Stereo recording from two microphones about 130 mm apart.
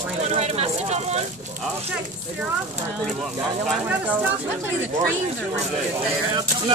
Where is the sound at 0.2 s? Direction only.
55° right (ahead or behind).